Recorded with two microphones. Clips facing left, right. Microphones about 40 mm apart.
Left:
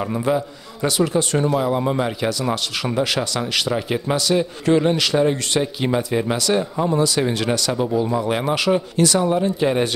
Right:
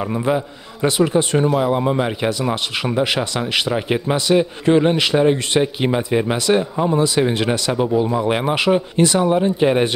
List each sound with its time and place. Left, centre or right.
0.8 s a man's voice: right